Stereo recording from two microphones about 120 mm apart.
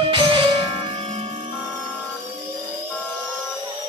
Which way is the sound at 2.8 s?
10° left (ahead or behind).